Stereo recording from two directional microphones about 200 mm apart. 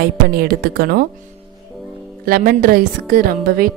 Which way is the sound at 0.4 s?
50° right (ahead or behind).